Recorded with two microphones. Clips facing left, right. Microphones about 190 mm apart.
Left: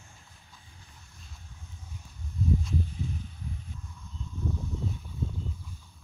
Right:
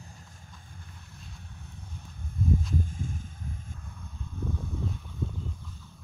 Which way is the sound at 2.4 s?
50° right (ahead or behind).